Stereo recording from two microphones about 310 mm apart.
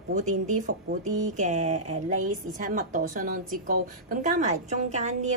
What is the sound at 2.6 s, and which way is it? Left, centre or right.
A woman's voice, right.